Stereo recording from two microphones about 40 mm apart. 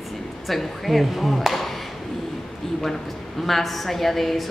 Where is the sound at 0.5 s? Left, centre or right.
Centre.